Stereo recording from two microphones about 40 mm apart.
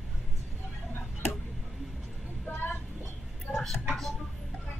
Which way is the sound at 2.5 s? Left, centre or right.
Left.